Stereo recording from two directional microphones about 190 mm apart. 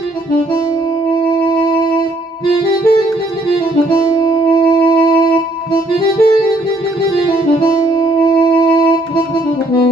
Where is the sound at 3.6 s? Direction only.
25° left (ahead or behind).